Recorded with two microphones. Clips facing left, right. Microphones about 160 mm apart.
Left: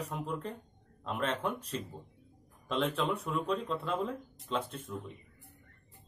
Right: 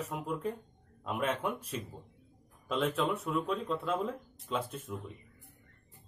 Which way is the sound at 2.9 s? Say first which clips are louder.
Right 1 dB; centre (ahead or behind).